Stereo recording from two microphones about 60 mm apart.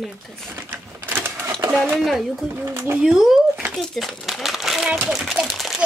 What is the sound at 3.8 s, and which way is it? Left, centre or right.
Crumpling, centre.